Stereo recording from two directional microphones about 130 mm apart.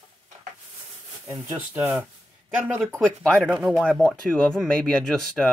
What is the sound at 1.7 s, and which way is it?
Speech, 15° right (ahead or behind).